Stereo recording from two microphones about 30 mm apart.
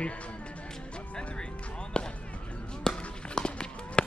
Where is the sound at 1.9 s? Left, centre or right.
Left.